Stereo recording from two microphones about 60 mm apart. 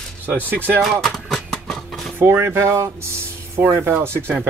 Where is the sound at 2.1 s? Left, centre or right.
Right.